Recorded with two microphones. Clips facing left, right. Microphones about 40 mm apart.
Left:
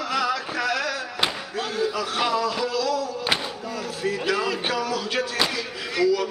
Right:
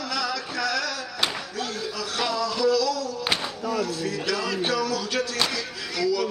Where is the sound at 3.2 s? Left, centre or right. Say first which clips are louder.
Left 1 dB; centre.